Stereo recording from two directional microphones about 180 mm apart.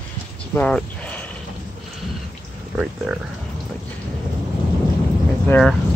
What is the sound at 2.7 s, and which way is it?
Speech, 5° right (ahead or behind).